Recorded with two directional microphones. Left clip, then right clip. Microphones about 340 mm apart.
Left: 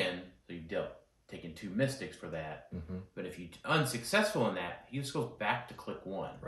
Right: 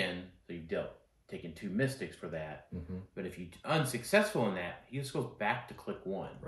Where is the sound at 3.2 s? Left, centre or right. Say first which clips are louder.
Even; centre.